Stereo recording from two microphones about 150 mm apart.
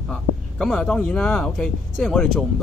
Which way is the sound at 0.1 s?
5° left (ahead or behind).